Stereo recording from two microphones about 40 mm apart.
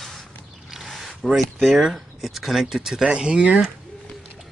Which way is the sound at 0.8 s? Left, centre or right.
Centre.